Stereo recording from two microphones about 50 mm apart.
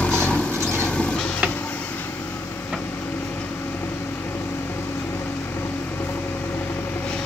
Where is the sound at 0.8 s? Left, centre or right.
Left.